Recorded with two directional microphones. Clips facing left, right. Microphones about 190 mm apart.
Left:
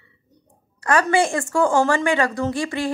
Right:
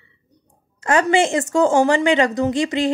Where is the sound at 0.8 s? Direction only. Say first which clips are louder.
Right 2 dB; 20° right (ahead or behind).